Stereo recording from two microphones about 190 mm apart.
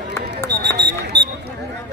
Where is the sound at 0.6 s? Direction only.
60° right (ahead or behind).